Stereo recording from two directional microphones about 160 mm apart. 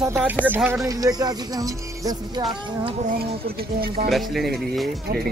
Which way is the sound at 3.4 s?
70° right (ahead or behind).